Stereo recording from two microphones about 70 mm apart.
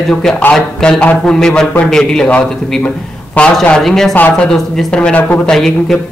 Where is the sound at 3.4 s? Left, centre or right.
Left.